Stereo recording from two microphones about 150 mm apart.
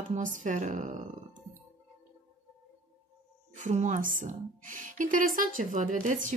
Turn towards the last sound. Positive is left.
turn(degrees=-60)  # may be behind; listen again after turning